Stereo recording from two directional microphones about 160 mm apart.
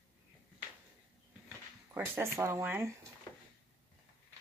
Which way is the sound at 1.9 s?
15° right (ahead or behind).